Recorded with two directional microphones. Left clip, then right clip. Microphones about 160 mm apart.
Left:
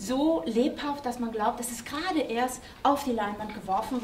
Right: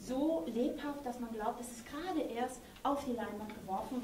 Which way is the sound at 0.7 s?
20° left (ahead or behind).